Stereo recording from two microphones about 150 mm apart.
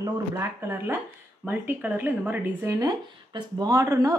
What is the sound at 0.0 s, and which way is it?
Speech, 15° right (ahead or behind).